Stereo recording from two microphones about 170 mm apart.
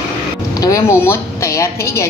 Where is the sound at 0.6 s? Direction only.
20° left (ahead or behind).